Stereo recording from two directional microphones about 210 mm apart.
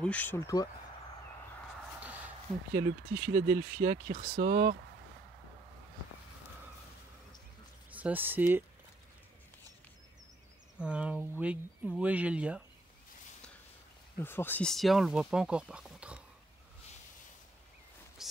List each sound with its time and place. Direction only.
0.0 s speech: 5° left (ahead or behind)
2.0 s a sound: 5° right (ahead or behind)
3.1 s speech: 10° right (ahead or behind)
3.8 s speech: 40° right (ahead or behind)
7.9 s speech: 10° right (ahead or behind)
10.8 s speech: 5° right (ahead or behind)
14.1 s speech: 10° left (ahead or behind)
18.2 s a sound: centre (ahead or behind)